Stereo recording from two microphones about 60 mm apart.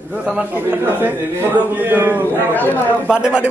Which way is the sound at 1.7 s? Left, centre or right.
Right.